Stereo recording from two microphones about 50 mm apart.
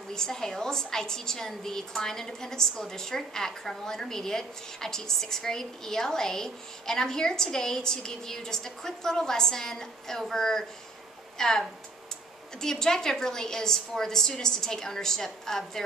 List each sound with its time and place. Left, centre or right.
0.1 s a woman's voice: centre
12.6 s a woman's voice: centre